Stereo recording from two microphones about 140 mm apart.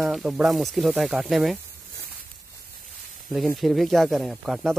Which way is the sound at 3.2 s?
Centre (ahead or behind).